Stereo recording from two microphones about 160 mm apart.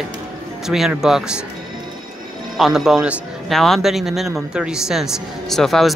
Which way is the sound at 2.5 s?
Centre (ahead or behind).